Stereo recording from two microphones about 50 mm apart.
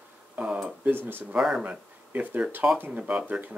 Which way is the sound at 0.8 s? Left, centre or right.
Right.